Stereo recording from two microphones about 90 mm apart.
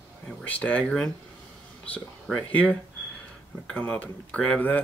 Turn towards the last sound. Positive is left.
turn(degrees=15)  # may be behind; listen again after turning